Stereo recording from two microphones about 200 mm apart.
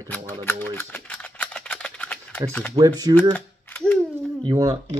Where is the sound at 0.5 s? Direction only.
10° left (ahead or behind).